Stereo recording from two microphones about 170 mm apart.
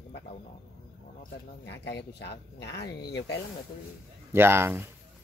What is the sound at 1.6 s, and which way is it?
Speech, 90° left.